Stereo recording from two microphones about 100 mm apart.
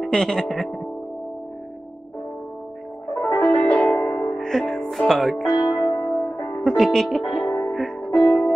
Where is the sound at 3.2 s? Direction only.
Centre (ahead or behind).